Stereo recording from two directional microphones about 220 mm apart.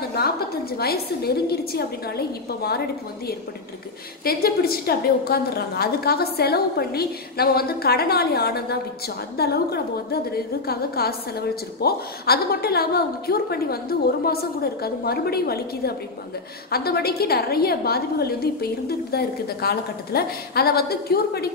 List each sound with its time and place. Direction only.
0.0 s a woman's voice: 45° left (ahead or behind)
4.2 s a woman's voice: 45° left (ahead or behind)